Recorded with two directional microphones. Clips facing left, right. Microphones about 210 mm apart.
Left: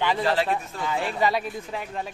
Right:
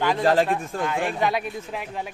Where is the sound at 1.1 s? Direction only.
Centre (ahead or behind).